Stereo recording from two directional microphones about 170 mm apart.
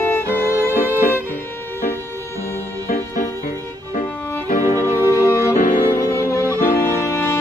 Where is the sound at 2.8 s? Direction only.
50° left (ahead or behind).